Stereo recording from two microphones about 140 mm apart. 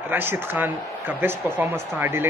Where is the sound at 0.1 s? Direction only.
15° right (ahead or behind).